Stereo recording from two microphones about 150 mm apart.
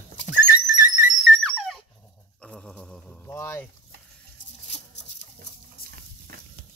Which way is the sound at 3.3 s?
15° left (ahead or behind).